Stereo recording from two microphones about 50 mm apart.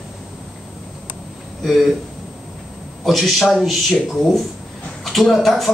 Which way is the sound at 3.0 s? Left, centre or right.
Centre.